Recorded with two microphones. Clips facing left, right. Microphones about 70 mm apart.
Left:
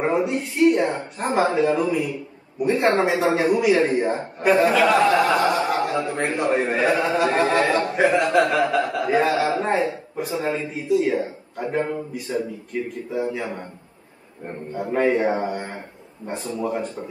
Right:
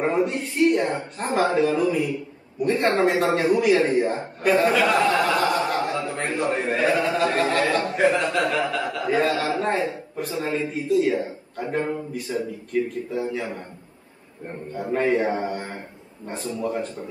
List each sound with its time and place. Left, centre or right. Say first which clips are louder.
0.0 s a sound: left 1 dB; centre
0.9 s a man's voice: left 2 dB; centre
5.9 s a man's voice: left 3 dB; centre
7.1 s a man's voice: left 2 dB; centre
14.7 s a man's voice: left 2 dB; centre